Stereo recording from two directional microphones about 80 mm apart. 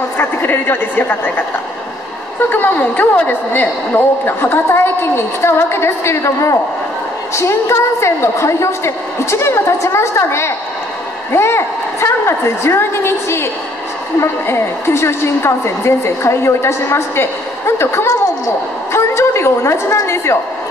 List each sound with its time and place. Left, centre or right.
0.2 s a woman's voice: left
2.5 s a woman's voice: left